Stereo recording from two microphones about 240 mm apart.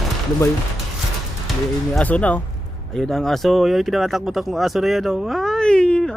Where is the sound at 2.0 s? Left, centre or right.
Centre.